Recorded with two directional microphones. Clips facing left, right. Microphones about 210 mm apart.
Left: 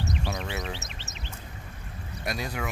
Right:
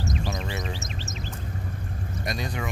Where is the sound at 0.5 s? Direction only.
65° left (ahead or behind).